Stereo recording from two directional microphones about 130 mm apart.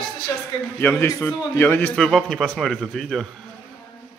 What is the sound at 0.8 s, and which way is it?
A man's voice, 15° left (ahead or behind).